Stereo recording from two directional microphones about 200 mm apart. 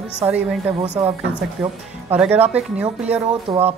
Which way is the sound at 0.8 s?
35° right (ahead or behind).